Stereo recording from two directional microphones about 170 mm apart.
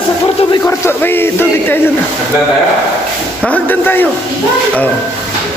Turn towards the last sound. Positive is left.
turn(degrees=10)  # may be behind; listen again after turning